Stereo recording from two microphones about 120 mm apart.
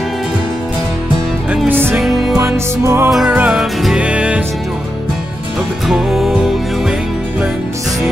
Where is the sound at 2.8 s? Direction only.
25° right (ahead or behind).